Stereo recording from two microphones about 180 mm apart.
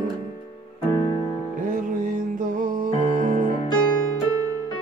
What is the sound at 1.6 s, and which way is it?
Music, 45° right (ahead or behind).